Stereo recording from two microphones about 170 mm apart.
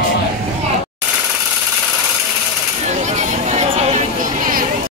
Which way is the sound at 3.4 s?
40° right (ahead or behind).